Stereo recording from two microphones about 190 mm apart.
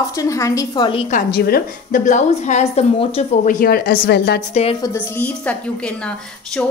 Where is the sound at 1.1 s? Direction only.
55° left (ahead or behind); by 3.1 s 35° left (ahead or behind).